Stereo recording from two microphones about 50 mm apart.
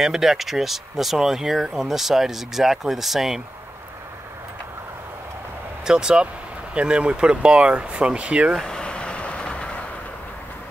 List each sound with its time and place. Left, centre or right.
0.0 s speech: centre
5.9 s speech: centre
8.6 s vehicle: centre